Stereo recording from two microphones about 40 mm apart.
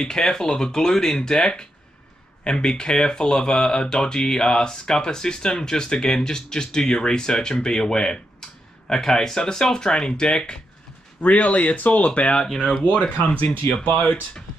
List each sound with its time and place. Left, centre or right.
0.0 s speech: centre
11.2 s speech: left
13.0 s speech: left